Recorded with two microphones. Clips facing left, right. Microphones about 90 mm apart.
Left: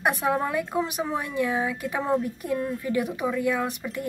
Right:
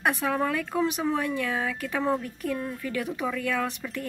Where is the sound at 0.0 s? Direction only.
15° left (ahead or behind).